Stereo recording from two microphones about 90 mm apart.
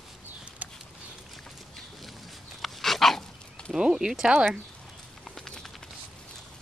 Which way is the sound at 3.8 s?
10° right (ahead or behind).